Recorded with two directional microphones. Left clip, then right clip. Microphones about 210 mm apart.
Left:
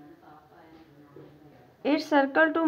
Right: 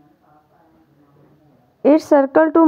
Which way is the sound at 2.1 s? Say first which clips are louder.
Right 9 dB; 45° right (ahead or behind).